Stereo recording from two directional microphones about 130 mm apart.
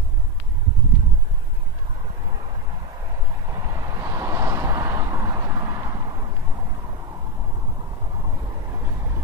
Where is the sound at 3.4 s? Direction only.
25° right (ahead or behind).